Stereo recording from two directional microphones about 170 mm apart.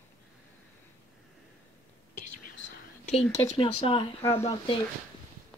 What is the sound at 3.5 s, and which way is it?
Speech, 35° left (ahead or behind).